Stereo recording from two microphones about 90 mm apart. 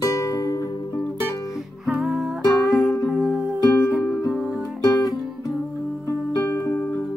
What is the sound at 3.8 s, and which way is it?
Music, 30° left (ahead or behind).